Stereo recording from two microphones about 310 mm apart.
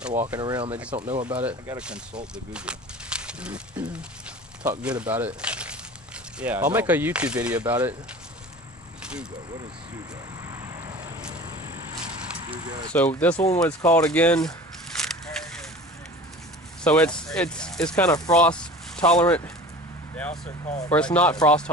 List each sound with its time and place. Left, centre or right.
0.3 s speech: centre
0.9 s speech: right
1.3 s speech: centre
9.0 s vehicle: centre
10.4 s vehicle: centre
12.9 s speech: centre
15.0 s a sound: centre
16.8 s speech: centre
20.9 s speech: centre